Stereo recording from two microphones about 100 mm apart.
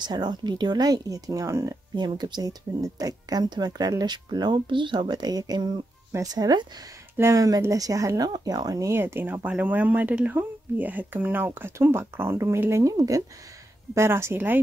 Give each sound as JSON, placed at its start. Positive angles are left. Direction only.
{"t": 0.0, "sound": "speech", "side_deg": -45}
{"t": 2.0, "sound": "speech", "side_deg": -45}
{"t": 7.2, "sound": "speech", "side_deg": -30}